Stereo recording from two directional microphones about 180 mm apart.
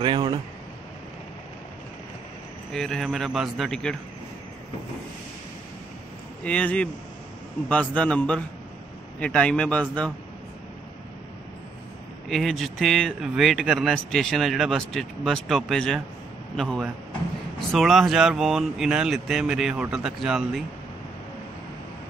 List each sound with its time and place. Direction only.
0.0 s speech: 25° right (ahead or behind)
2.7 s speech: centre (ahead or behind)
6.4 s a man's voice: 5° left (ahead or behind)
12.3 s speech: centre (ahead or behind)